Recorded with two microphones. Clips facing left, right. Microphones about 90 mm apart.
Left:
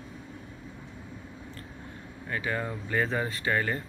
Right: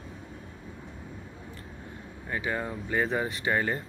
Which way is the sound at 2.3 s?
15° right (ahead or behind).